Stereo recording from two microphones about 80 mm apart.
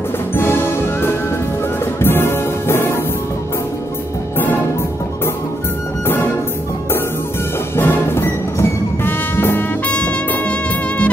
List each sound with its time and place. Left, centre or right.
0.3 s music: left
2.0 s music: left
7.7 s music: left; by 11.1 s centre